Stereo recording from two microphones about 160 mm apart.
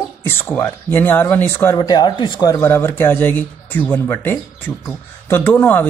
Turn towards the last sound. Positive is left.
turn(degrees=10)  # may be behind; listen again after turning